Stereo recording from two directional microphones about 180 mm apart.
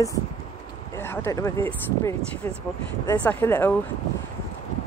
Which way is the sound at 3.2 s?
10° left (ahead or behind).